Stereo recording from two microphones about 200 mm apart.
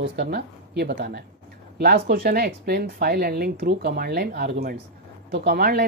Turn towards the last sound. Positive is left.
turn(degrees=-50)  # may be behind; listen again after turning